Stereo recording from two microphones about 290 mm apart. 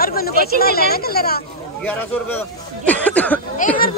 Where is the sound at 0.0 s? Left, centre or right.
Left.